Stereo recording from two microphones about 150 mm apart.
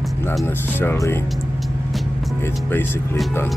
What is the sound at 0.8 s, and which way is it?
Speech, 15° left (ahead or behind).